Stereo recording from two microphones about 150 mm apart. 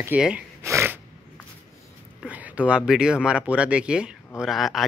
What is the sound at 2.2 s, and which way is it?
Speech, 10° right (ahead or behind).